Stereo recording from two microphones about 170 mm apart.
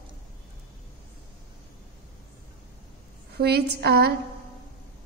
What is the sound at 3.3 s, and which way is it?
Speech, 75° right (ahead or behind).